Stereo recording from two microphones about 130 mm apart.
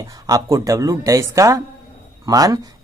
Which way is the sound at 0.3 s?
25° right (ahead or behind).